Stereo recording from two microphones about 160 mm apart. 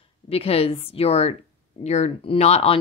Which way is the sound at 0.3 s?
35° left (ahead or behind).